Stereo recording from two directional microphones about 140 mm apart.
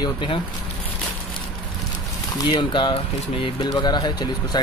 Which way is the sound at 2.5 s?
35° left (ahead or behind).